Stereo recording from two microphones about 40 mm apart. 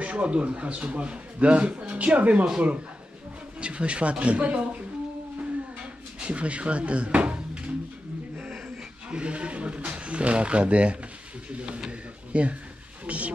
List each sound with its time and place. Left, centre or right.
0.0 s a man's voice: right
3.6 s speech: right
6.1 s speech: right
9.1 s a man's voice: right